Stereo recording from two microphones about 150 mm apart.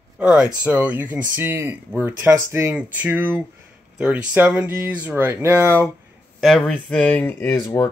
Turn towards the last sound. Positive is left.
turn(degrees=15)  # may be behind; listen again after turning